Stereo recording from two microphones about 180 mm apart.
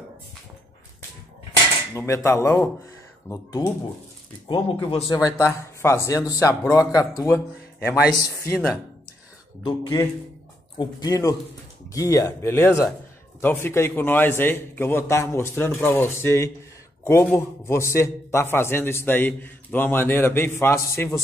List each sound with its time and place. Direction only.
2.0 s a man's voice: 15° left (ahead or behind)
4.5 s speech: 30° left (ahead or behind)
5.1 s a man's voice: 15° left (ahead or behind)
9.6 s a man's voice: 20° left (ahead or behind)